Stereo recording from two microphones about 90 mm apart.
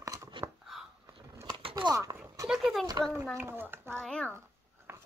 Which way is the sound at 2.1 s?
45° right (ahead or behind).